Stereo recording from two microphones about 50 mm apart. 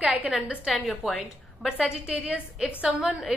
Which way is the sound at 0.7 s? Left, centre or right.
Centre.